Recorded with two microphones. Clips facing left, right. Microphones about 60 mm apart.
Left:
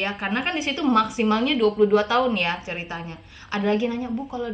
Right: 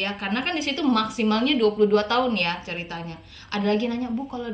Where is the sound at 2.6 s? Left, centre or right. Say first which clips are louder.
Left 1 dB; centre.